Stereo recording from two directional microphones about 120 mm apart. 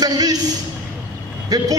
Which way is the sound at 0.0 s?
35° right (ahead or behind).